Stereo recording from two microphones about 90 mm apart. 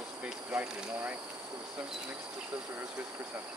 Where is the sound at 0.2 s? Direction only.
20° right (ahead or behind).